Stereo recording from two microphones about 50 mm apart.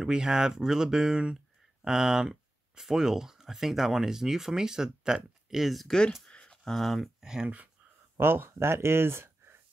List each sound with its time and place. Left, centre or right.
0.0 s speech: centre
5.9 s speech: centre
6.3 s a sound: centre
7.4 s speech: right
8.2 s speech: right